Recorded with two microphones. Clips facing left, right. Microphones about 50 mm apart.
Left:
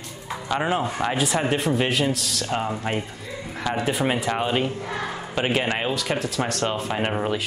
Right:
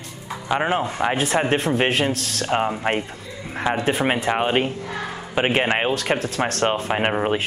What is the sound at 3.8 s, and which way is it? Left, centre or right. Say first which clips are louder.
Speech: even; right.